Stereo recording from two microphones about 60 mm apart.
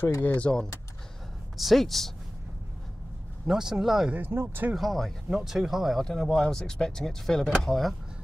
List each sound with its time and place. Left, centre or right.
0.4 s speech: centre
1.6 s speech: centre
3.4 s speech: centre
4.3 s speech: right
4.7 s speech: centre